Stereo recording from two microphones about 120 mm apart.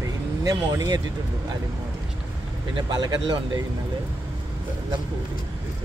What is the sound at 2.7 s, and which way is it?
Speech, 40° right (ahead or behind).